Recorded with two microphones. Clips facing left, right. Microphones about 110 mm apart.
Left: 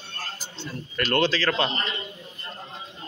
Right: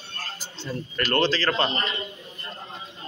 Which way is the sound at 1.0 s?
Centre (ahead or behind).